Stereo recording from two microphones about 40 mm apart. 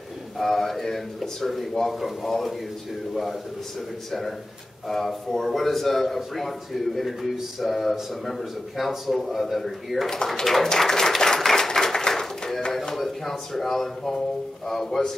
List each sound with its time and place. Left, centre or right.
0.4 s a man's voice: centre
4.8 s a man's voice: centre
10.0 s a man's voice: centre
10.8 s applause: centre
12.7 s a man's voice: centre